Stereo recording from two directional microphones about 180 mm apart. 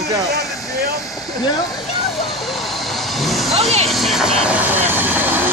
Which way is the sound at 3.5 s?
35° right (ahead or behind).